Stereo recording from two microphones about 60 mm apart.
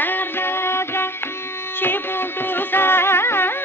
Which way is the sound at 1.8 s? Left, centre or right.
Left.